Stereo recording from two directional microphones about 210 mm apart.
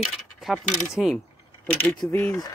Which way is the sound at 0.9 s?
Centre (ahead or behind).